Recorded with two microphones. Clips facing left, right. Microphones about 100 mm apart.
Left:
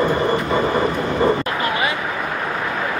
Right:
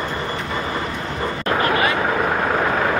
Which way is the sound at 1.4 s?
35° right (ahead or behind).